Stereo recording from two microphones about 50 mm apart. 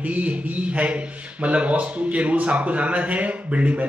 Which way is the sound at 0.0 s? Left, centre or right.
Right.